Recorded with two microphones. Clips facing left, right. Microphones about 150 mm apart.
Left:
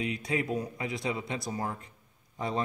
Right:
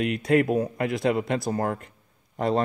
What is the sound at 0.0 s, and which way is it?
A man's voice, 70° right (ahead or behind).